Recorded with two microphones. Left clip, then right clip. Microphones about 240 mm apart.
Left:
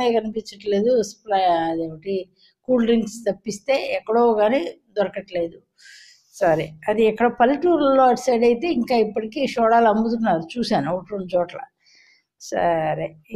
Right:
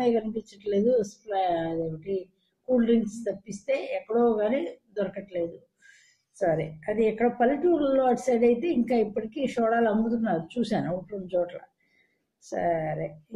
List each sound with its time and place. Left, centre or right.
0.0 s a woman's voice: centre
6.4 s a woman's voice: centre